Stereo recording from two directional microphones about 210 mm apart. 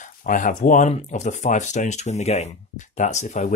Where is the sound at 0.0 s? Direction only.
40° left (ahead or behind).